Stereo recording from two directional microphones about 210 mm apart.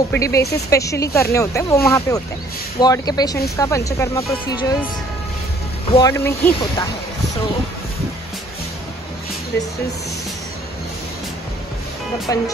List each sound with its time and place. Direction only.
0.1 s speech: 15° left (ahead or behind)
5.9 s speech: 15° left (ahead or behind)
12.3 s speech: 15° left (ahead or behind)